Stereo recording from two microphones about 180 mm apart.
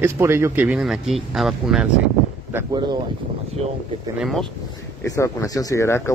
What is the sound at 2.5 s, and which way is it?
Speech, 20° right (ahead or behind).